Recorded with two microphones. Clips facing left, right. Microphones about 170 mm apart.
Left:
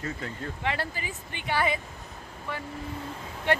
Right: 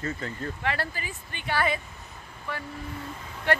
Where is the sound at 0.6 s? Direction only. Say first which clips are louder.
Even; 20° left (ahead or behind).